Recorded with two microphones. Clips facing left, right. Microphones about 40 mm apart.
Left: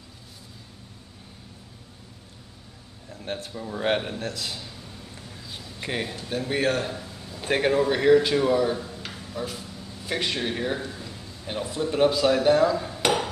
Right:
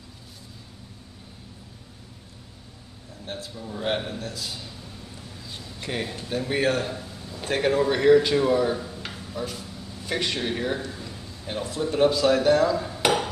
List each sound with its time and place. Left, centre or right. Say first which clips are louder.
3.3 s speech: left 3 dB; left
4.2 s a man's voice: left 2 dB; left
5.8 s speech: left 1 dB; centre
6.2 s a man's voice: right 1 dB; centre
7.5 s speech: left 2 dB; left
7.8 s speech: right 2 dB; centre
10.9 s a sound: right 1 dB; centre
11.4 s a man's voice: even; centre